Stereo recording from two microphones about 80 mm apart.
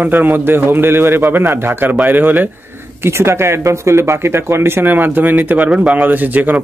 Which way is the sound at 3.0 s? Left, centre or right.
Right.